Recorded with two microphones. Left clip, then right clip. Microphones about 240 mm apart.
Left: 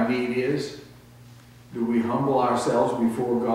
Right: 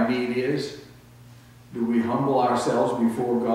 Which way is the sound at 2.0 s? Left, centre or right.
Centre.